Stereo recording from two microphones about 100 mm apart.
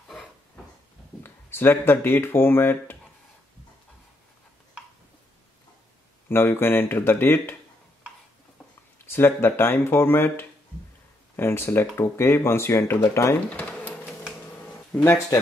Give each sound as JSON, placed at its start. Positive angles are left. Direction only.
{"t": 1.2, "sound": "speech", "side_deg": 20}
{"t": 6.2, "sound": "speech", "side_deg": 20}
{"t": 8.9, "sound": "speech", "side_deg": 25}
{"t": 13.5, "sound": "a sound", "side_deg": 15}
{"t": 14.9, "sound": "speech", "side_deg": 15}